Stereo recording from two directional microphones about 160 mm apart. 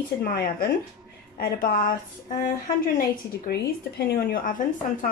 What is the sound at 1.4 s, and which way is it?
A woman's voice, 60° left (ahead or behind).